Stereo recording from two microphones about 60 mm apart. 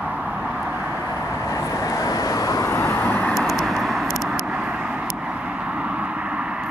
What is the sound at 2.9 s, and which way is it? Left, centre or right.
Vehicle, left.